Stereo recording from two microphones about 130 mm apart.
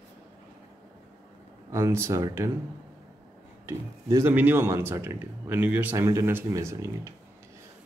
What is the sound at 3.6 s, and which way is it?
Speech, 20° right (ahead or behind).